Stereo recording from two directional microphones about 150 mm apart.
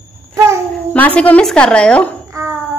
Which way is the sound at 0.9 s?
10° left (ahead or behind).